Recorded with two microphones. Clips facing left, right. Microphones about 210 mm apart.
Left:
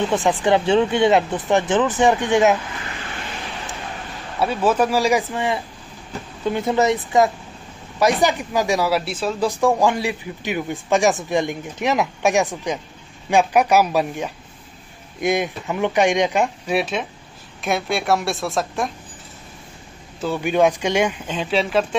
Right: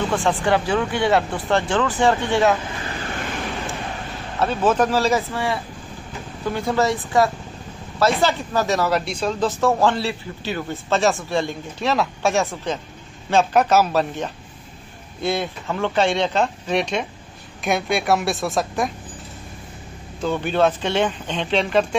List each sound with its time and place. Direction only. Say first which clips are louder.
0.1 s speech: left 1 dB; 20° left (ahead or behind)
4.4 s a woman's voice: even; 10° left (ahead or behind)
20.2 s speech: left 1 dB; 10° left (ahead or behind)